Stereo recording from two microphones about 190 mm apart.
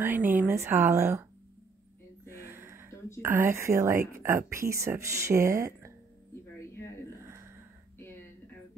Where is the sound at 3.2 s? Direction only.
10° right (ahead or behind).